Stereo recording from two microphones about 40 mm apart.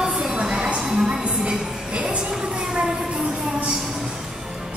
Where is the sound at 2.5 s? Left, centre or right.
Right.